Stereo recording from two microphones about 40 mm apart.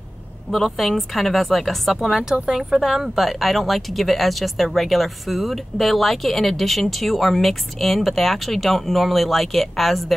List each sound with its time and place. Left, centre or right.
0.5 s speech: centre
2.0 s speech: centre